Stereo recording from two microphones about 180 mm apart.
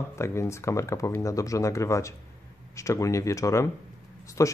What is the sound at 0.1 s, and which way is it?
Speech, 15° left (ahead or behind).